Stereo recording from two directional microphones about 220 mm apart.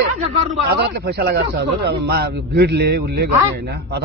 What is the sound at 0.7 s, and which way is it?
A man's voice, 45° right (ahead or behind).